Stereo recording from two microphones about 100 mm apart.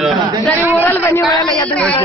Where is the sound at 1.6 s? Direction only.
15° left (ahead or behind).